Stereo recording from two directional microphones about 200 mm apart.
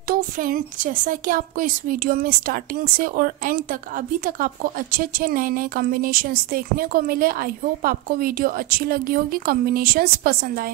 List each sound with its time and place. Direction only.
0.1 s a woman's voice: 45° right (ahead or behind)